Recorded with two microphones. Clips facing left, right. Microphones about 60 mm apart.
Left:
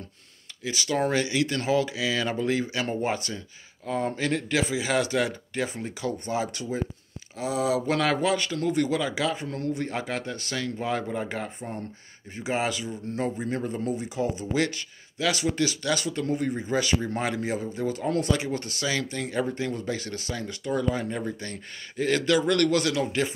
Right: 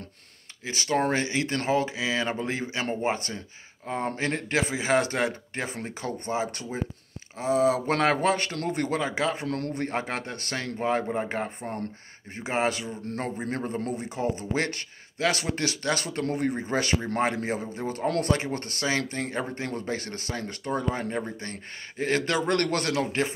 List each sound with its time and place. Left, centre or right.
0.7 s speech: right
9.4 s a man's voice: right
18.0 s speech: right
18.3 s speech: right